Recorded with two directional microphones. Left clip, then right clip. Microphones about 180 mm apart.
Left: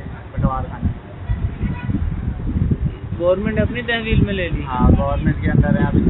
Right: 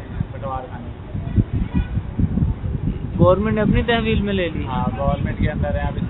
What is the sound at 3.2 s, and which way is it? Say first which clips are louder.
Speech: right 1 dB; 25° right (ahead or behind).